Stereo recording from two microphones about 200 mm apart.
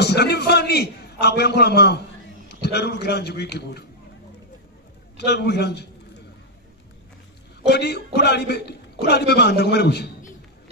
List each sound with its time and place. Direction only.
0.0 s a man's voice: 55° left (ahead or behind)
5.1 s a man's voice: 55° left (ahead or behind)
7.6 s a man's voice: 55° left (ahead or behind)